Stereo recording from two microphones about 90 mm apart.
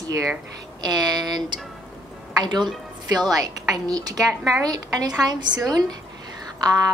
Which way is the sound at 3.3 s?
45° right (ahead or behind).